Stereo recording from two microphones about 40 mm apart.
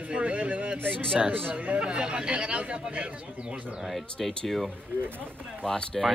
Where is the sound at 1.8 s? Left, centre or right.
Right.